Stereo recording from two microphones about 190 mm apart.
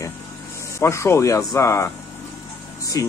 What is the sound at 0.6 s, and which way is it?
Speech, 15° left (ahead or behind).